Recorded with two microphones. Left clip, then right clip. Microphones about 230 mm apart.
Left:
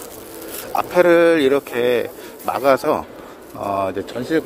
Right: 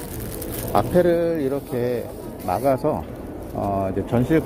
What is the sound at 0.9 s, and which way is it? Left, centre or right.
Speech, left.